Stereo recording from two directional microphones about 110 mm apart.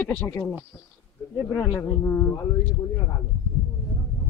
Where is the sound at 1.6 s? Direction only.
30° left (ahead or behind).